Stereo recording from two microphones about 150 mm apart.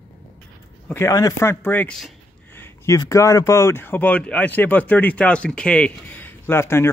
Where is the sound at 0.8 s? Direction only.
20° left (ahead or behind).